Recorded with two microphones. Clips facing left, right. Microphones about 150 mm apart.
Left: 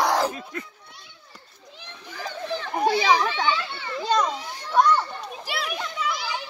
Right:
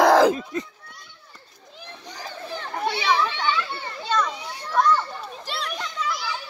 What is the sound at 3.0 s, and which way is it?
Children playing, 45° left (ahead or behind).